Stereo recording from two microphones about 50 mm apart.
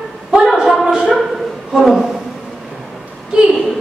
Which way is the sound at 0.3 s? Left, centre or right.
Centre.